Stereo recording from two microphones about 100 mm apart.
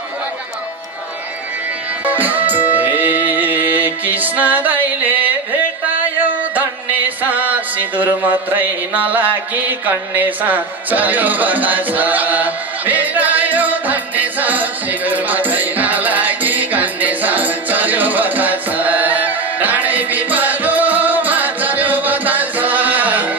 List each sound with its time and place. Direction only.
2.0 s music: 15° right (ahead or behind)